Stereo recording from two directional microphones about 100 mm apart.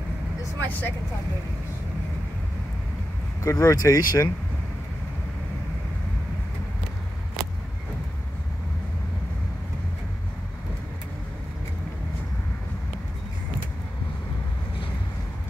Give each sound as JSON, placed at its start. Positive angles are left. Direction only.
{"t": 0.6, "sound": "speech", "side_deg": 20}
{"t": 3.4, "sound": "speech", "side_deg": 35}